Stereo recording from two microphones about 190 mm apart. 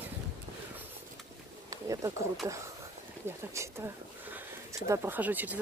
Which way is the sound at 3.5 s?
10° right (ahead or behind).